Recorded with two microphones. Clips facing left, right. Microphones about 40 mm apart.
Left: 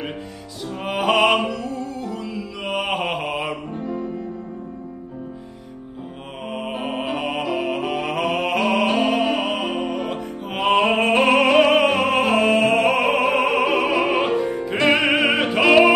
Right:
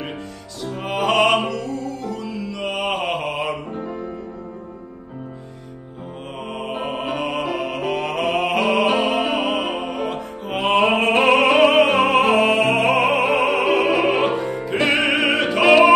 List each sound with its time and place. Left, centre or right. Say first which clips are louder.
0.7 s music: even; centre
3.7 s music: left 1 dB; right
6.7 s music: right 1 dB; centre